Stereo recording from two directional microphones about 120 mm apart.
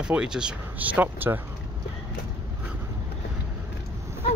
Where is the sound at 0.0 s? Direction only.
5° right (ahead or behind).